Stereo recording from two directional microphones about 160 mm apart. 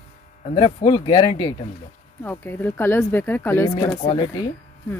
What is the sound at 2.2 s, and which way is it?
Speech, 10° left (ahead or behind).